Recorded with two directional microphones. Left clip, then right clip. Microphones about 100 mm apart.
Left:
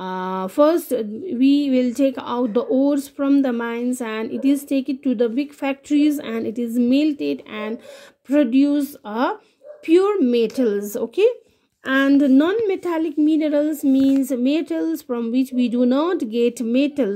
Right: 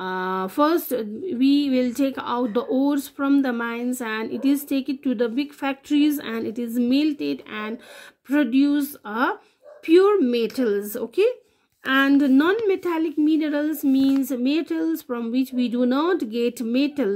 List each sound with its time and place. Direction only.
0.0 s a woman's voice: 20° left (ahead or behind)
11.8 s speech: 20° left (ahead or behind)